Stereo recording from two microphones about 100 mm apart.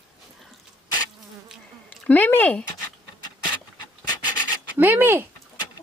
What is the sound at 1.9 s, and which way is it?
Speech, 15° left (ahead or behind).